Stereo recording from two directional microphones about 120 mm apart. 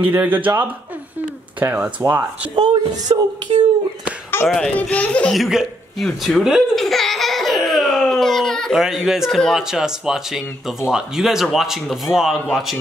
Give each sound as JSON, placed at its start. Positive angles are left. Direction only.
{"t": 0.0, "sound": "a man's voice", "side_deg": -15}
{"t": 2.5, "sound": "speech", "side_deg": -40}
{"t": 4.5, "sound": "a child's voice", "side_deg": 5}
{"t": 5.3, "sound": "baby laughter", "side_deg": -5}
{"t": 10.9, "sound": "speech", "side_deg": -5}